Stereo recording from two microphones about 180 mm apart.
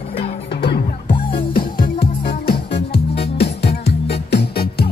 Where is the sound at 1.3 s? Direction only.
55° left (ahead or behind).